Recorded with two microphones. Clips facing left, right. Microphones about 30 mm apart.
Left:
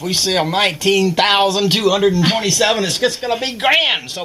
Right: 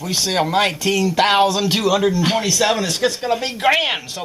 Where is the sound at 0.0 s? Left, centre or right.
Left.